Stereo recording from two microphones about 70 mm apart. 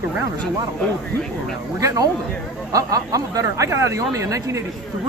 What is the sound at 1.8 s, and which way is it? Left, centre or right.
Speech, right.